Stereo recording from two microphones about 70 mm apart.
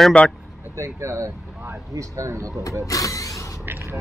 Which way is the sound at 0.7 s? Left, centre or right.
Right.